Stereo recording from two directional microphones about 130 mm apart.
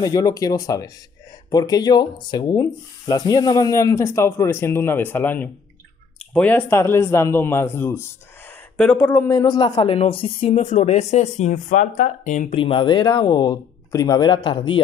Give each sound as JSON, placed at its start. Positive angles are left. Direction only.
{"t": 0.0, "sound": "speech", "side_deg": 30}
{"t": 10.6, "sound": "speech", "side_deg": 60}
{"t": 12.5, "sound": "speech", "side_deg": 40}